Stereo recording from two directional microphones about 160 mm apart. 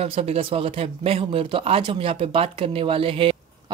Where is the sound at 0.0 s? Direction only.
40° right (ahead or behind).